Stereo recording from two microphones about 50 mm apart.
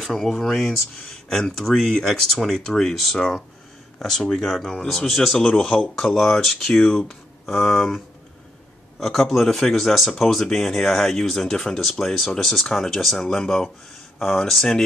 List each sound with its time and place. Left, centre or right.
0.0 s speech: centre
9.0 s speech: centre